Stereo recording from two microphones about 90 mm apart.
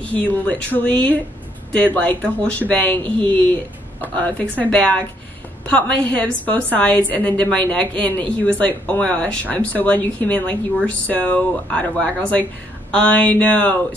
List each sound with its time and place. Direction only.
0.0 s speech: 15° left (ahead or behind)